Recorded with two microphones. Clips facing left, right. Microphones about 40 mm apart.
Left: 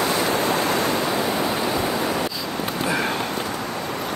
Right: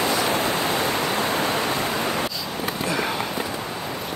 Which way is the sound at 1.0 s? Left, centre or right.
Right.